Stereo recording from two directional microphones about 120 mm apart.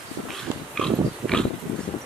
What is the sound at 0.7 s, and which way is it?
Pig, 5° left (ahead or behind).